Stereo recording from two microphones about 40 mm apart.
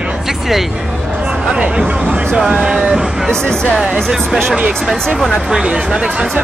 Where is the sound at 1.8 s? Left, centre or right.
Right.